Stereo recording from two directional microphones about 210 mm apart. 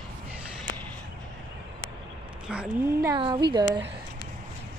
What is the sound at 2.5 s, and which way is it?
Speech, 5° right (ahead or behind).